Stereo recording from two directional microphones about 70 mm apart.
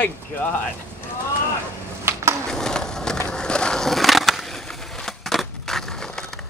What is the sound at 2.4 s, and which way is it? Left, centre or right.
Skateboard, centre.